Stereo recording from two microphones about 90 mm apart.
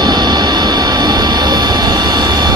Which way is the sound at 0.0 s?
50° right (ahead or behind).